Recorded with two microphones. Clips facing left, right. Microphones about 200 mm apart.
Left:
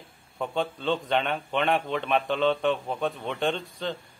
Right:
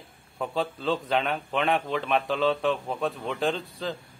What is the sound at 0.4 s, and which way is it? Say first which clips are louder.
A man's voice: even; centre (ahead or behind).